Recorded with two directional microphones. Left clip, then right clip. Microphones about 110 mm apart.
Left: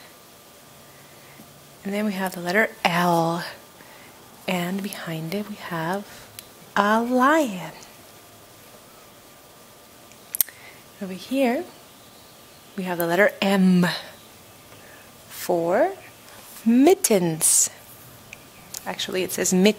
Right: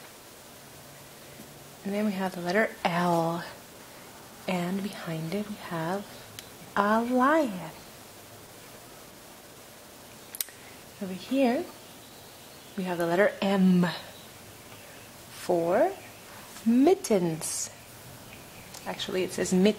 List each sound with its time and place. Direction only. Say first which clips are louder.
1.9 s a woman's voice: left 4 dB; 25° left (ahead or behind)
10.4 s a sound: left 8 dB; 20° left (ahead or behind)
11.1 s a woman's voice: left 3 dB; 20° left (ahead or behind)
12.8 s a woman's voice: left 5 dB; 25° left (ahead or behind)
15.4 s a woman's voice: left 4 dB; 25° left (ahead or behind)
18.8 s a woman's voice: left 4 dB; 25° left (ahead or behind)